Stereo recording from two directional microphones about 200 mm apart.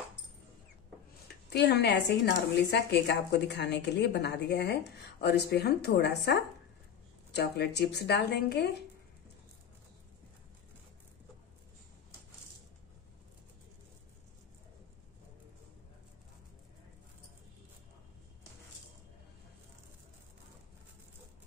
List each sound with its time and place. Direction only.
1.5 s a woman's voice: 55° left (ahead or behind)